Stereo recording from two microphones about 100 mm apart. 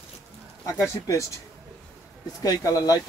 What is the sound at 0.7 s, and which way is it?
Speech, 30° left (ahead or behind).